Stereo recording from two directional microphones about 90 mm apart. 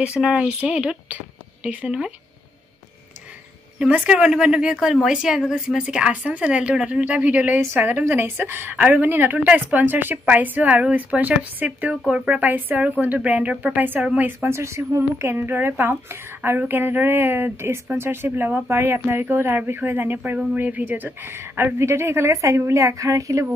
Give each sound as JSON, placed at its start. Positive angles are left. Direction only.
{"t": 0.0, "sound": "speech", "side_deg": -10}
{"t": 3.8, "sound": "speech", "side_deg": -15}